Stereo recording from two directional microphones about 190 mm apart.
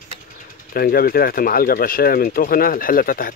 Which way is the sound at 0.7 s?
50° left (ahead or behind).